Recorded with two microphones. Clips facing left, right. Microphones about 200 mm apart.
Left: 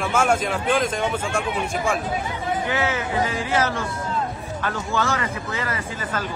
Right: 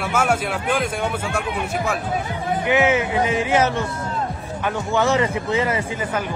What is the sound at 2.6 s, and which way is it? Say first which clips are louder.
Speech: right 10 dB; 15° right (ahead or behind).